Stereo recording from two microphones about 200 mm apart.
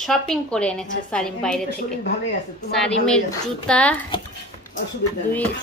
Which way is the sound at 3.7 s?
5° left (ahead or behind).